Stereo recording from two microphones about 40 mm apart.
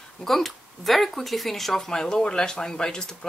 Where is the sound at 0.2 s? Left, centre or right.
Centre.